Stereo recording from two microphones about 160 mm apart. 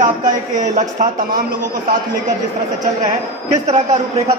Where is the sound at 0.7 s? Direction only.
50° right (ahead or behind).